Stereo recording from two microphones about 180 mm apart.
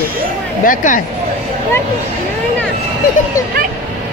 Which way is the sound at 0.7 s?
50° left (ahead or behind).